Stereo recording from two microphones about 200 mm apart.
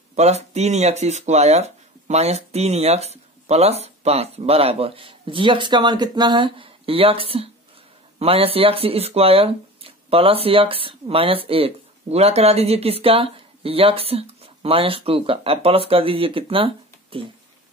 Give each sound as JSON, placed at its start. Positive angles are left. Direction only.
{"t": 0.1, "sound": "speech", "side_deg": -35}